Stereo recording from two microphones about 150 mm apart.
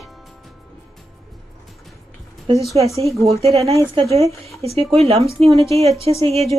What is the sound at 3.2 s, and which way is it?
A woman's voice, 45° right (ahead or behind).